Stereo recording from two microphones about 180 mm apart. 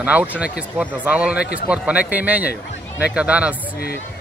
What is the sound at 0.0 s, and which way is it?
A man's voice, 5° right (ahead or behind).